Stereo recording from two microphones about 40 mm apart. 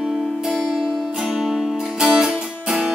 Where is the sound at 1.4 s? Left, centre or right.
Centre.